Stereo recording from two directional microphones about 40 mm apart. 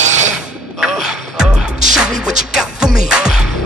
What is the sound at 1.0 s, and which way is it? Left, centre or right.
Music, centre.